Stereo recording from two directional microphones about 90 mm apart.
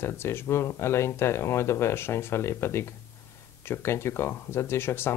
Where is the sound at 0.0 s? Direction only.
30° left (ahead or behind).